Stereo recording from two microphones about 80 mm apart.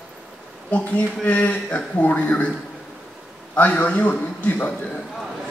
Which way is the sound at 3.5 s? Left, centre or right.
Centre.